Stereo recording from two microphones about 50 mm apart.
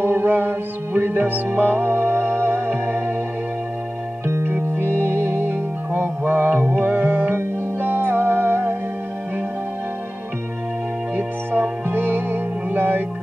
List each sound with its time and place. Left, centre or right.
0.0 s music: right
4.3 s music: right
11.9 s music: right